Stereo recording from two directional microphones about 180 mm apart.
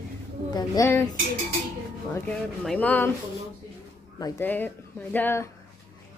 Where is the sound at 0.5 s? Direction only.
15° left (ahead or behind).